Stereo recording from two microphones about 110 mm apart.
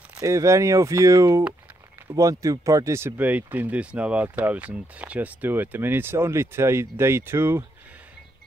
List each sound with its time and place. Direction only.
0.2 s speech: 25° right (ahead or behind)